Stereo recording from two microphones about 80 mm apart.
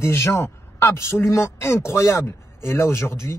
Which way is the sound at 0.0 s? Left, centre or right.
Left.